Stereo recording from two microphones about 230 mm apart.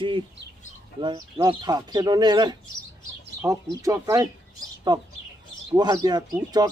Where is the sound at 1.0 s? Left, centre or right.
Centre.